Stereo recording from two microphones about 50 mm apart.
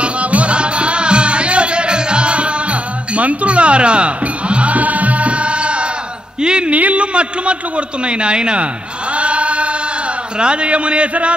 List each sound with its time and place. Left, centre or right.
0.0 s music: right
6.4 s a man's voice: centre
9.1 s chant: right
10.4 s a man's voice: right